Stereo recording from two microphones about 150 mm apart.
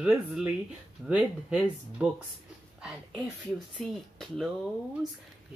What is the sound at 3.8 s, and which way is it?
Speech, centre (ahead or behind).